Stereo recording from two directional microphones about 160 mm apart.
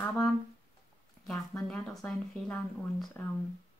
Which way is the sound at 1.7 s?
5° left (ahead or behind).